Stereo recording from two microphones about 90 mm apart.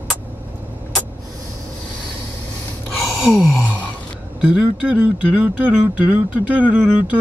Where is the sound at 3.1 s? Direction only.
Centre (ahead or behind).